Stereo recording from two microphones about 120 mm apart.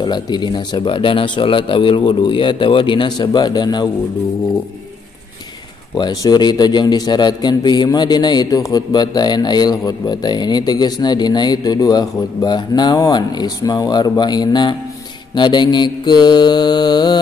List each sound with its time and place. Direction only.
0.0 s speech: 40° left (ahead or behind)
5.9 s a man's voice: 35° left (ahead or behind)